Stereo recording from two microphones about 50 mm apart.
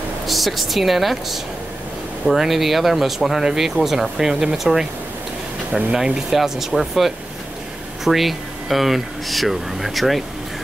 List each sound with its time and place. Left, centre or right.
0.3 s speech: centre
5.9 s speech: centre